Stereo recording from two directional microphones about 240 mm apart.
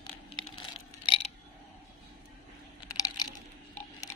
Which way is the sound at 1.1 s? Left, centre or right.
Left.